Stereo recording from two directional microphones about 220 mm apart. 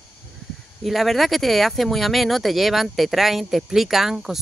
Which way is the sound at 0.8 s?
Centre (ahead or behind).